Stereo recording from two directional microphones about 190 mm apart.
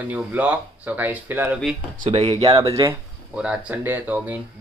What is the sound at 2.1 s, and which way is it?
Speech, 30° right (ahead or behind).